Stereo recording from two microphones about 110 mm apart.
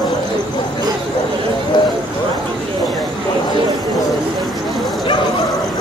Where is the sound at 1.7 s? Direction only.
45° left (ahead or behind).